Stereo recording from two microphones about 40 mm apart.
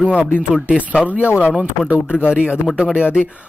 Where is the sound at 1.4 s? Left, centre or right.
Right.